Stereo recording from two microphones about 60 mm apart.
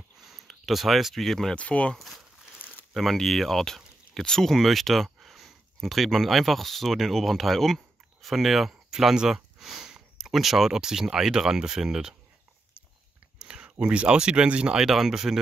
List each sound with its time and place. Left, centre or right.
0.2 s speech: centre
1.5 s speech: left
2.9 s speech: centre
13.4 s a sound: centre
13.7 s speech: centre
14.8 s speech: centre